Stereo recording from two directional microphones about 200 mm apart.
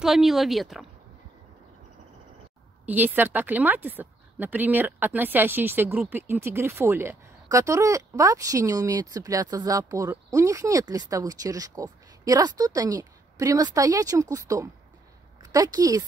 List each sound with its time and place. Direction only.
0.0 s speech: centre (ahead or behind)
2.9 s a woman's voice: 10° right (ahead or behind)